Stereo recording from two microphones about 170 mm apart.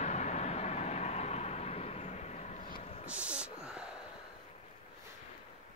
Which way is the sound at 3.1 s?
5° right (ahead or behind).